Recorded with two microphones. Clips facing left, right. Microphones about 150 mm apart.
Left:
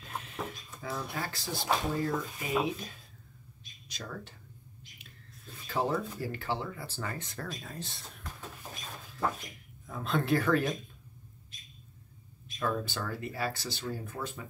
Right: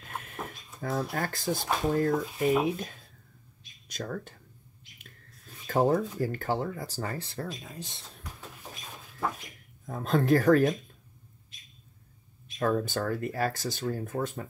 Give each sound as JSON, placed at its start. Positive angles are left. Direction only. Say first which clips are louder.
{"t": 0.0, "sound": "a sound", "louder": "even", "side_deg": -50}
{"t": 0.7, "sound": "speech", "louder": "right 6 dB", "side_deg": -45}
{"t": 3.9, "sound": "speech", "louder": "right 6 dB", "side_deg": -50}
{"t": 5.7, "sound": "speech", "louder": "right 6 dB", "side_deg": -45}
{"t": 7.6, "sound": "speech", "louder": "even", "side_deg": -15}
{"t": 9.8, "sound": "speech", "louder": "right 5 dB", "side_deg": -40}
{"t": 12.5, "sound": "speech", "louder": "right 5 dB", "side_deg": -50}